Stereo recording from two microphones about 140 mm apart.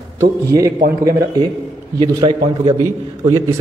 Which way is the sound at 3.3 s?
20° right (ahead or behind).